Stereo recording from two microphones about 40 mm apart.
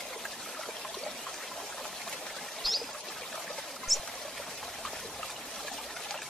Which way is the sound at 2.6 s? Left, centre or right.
Centre.